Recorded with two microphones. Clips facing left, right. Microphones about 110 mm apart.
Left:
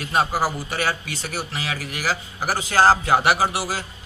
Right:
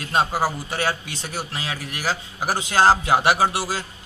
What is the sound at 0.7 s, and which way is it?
Speech, 25° right (ahead or behind).